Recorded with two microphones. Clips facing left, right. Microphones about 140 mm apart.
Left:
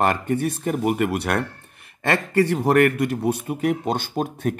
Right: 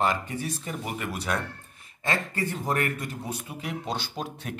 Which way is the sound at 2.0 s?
70° left (ahead or behind).